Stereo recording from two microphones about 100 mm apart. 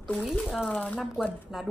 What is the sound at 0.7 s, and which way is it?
Speech, 15° left (ahead or behind).